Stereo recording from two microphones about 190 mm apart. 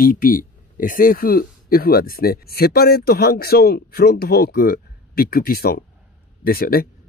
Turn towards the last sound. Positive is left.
turn(degrees=50)  # may be behind; listen again after turning